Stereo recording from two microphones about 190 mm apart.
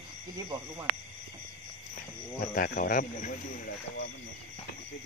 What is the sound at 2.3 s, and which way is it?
Speech, 50° left (ahead or behind).